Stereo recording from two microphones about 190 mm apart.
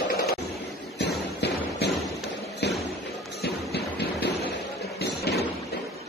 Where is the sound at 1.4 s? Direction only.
60° left (ahead or behind).